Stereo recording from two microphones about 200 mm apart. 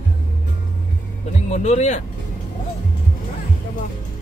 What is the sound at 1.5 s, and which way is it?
Speech, 35° left (ahead or behind).